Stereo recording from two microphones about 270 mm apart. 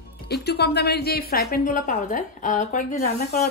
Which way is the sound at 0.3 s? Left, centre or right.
Left.